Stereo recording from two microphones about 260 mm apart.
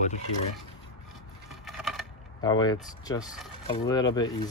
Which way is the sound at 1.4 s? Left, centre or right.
Centre.